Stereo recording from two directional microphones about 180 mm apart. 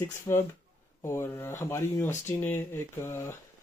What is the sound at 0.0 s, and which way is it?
Speech, 15° left (ahead or behind).